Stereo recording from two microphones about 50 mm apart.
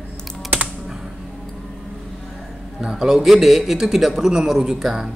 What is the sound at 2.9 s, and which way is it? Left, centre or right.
Speech, centre.